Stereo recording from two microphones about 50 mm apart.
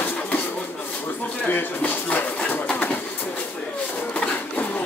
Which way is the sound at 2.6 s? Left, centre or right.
Left.